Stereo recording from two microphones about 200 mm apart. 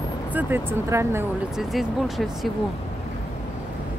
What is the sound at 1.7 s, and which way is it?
Speech, centre (ahead or behind).